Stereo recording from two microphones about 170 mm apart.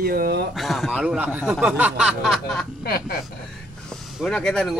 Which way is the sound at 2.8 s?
65° left (ahead or behind).